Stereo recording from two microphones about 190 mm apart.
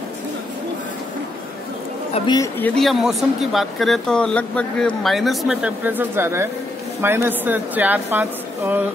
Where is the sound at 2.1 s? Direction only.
20° left (ahead or behind).